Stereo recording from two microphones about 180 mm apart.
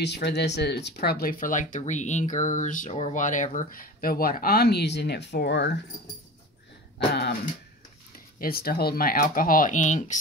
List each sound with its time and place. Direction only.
0.0 s speech: 70° left (ahead or behind)
7.1 s speech: 70° left (ahead or behind)
8.4 s speech: 55° left (ahead or behind)